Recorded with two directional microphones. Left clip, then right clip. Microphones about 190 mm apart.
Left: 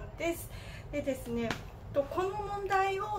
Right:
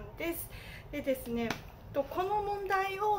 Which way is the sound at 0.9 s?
20° right (ahead or behind).